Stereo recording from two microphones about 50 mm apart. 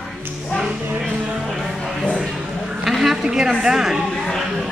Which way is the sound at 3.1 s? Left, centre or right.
Centre.